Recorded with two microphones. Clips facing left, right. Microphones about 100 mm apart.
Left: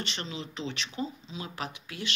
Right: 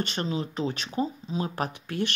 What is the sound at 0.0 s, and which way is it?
Speech, 45° right (ahead or behind).